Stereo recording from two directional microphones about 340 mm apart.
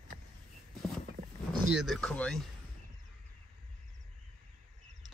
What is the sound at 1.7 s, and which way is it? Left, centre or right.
Speech, centre.